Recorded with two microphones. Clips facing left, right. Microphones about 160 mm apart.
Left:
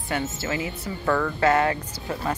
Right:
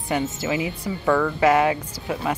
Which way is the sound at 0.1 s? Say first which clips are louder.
Right 4 dB; 15° right (ahead or behind).